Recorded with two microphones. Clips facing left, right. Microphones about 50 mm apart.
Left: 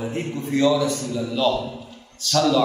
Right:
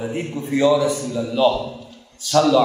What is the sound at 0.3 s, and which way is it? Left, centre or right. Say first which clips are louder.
A man's voice: right 3 dB; centre.